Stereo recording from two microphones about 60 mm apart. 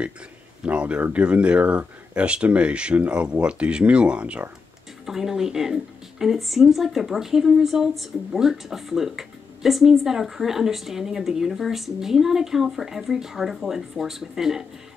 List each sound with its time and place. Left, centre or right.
0.7 s speech: right
5.0 s a woman's voice: centre